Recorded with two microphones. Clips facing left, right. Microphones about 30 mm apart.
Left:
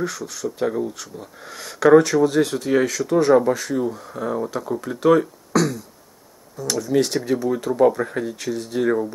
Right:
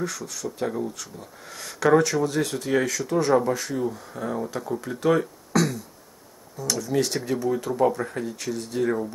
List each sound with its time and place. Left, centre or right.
0.0 s speech: centre